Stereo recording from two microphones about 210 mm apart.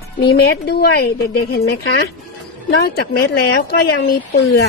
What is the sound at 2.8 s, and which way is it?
Speech, 50° left (ahead or behind).